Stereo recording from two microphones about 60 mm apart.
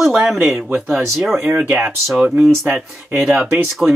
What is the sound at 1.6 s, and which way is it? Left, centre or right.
Speech, centre.